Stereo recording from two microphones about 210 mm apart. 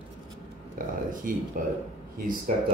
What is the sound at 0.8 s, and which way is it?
Speech, 45° right (ahead or behind).